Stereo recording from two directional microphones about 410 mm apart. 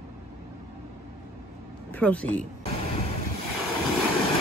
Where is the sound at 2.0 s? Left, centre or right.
Centre.